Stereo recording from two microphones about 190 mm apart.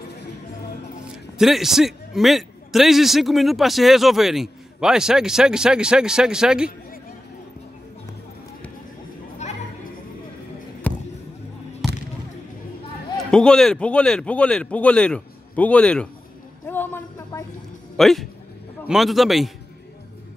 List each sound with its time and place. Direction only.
1.4 s a man's voice: centre (ahead or behind)
9.4 s music: 35° left (ahead or behind)
10.9 s basketball bounce: 10° left (ahead or behind)
11.8 s a sound: centre (ahead or behind)
13.2 s a man's voice: 5° left (ahead or behind)
16.6 s music: 10° left (ahead or behind)
17.9 s a man's voice: centre (ahead or behind)